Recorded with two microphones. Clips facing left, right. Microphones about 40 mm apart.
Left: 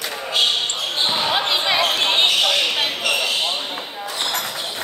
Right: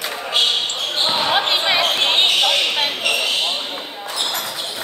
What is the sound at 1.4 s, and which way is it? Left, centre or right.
Basketball bounce, right.